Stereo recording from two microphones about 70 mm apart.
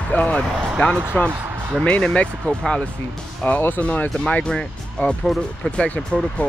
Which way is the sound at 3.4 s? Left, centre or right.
Centre.